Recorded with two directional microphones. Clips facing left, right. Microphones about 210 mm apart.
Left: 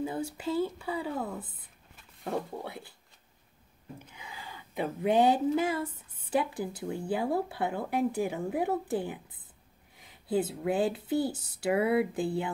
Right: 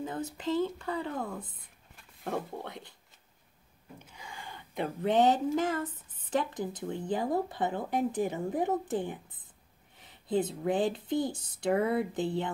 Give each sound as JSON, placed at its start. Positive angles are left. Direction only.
{"t": 0.0, "sound": "speech", "side_deg": 10}
{"t": 4.2, "sound": "speech", "side_deg": 5}